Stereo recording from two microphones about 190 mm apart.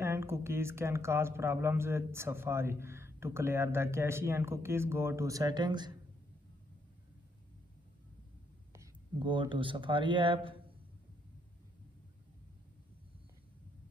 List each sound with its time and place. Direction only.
0.0 s speech: 15° right (ahead or behind)
9.2 s a man's voice: 25° right (ahead or behind)